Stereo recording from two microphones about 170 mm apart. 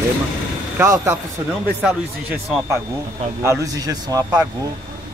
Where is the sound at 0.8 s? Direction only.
15° right (ahead or behind).